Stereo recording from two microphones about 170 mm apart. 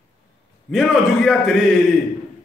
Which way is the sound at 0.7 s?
Centre (ahead or behind).